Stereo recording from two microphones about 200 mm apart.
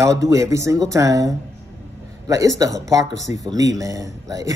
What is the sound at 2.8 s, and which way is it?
Speech, 15° right (ahead or behind).